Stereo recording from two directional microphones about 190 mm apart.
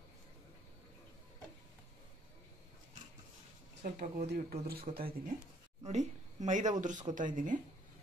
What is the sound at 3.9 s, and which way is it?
Speech, 50° right (ahead or behind).